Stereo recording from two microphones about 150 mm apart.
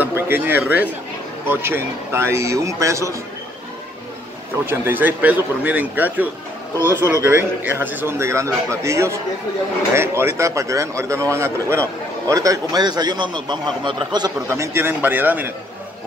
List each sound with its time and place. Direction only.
0.0 s a man's voice: 15° right (ahead or behind)
4.6 s a man's voice: 15° right (ahead or behind); by 14.3 s 30° right (ahead or behind)
14.5 s speech: 15° right (ahead or behind)